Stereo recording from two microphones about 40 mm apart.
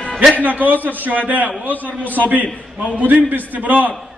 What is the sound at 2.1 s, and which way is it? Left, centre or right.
A man's voice, right.